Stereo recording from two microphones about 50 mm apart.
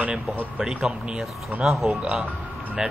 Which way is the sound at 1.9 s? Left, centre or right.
Right.